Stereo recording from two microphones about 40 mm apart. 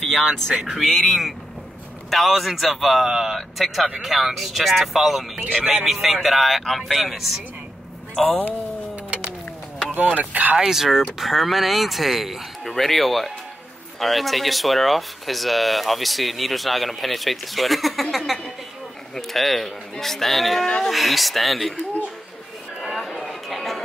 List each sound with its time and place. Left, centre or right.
0.0 s speech: centre
3.3 s speech: centre
5.6 s speech: centre
5.9 s speech: centre
10.0 s speech: right
10.7 s speech: centre
20.6 s speech: centre
20.9 s speech: centre
22.8 s a sound: centre
23.5 s music: centre